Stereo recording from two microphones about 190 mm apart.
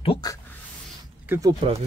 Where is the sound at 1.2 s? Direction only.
10° right (ahead or behind).